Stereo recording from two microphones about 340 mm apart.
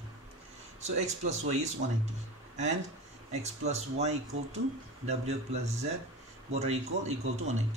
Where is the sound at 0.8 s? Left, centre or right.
Centre.